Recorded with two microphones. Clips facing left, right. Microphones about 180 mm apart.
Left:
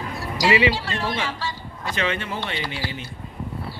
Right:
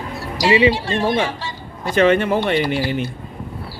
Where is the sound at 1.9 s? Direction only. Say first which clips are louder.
Right 13 dB; 55° right (ahead or behind).